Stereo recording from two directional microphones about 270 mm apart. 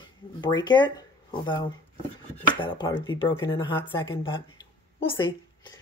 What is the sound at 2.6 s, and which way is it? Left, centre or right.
Speech, centre.